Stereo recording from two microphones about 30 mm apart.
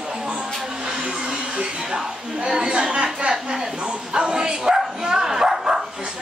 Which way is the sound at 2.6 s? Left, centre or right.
Right.